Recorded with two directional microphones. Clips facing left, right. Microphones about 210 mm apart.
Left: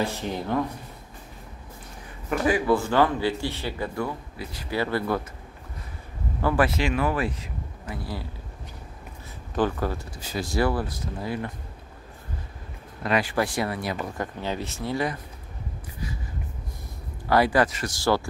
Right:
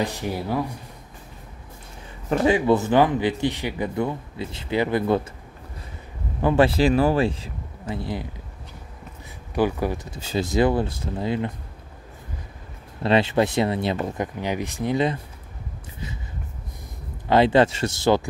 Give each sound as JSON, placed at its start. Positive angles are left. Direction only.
{"t": 0.0, "sound": "speech", "side_deg": -15}
{"t": 2.2, "sound": "speech", "side_deg": -25}
{"t": 6.4, "sound": "speech", "side_deg": -25}
{"t": 9.6, "sound": "speech", "side_deg": -10}
{"t": 13.0, "sound": "speech", "side_deg": -25}
{"t": 17.3, "sound": "speech", "side_deg": -25}